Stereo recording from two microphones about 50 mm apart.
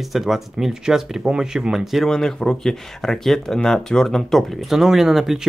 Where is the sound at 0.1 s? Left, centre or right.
Centre.